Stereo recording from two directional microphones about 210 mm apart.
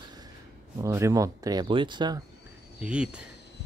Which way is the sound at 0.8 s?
15° right (ahead or behind).